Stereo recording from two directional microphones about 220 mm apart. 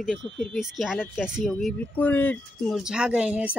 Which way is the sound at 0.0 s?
Centre (ahead or behind).